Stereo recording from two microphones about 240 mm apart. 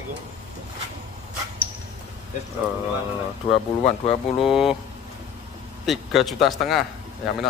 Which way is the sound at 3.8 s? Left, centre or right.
Left.